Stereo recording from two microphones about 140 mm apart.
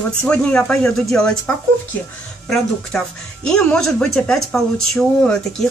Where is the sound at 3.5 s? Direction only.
5° left (ahead or behind).